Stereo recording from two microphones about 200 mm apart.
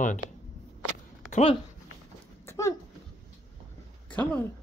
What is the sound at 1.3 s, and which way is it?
Speech, 30° left (ahead or behind).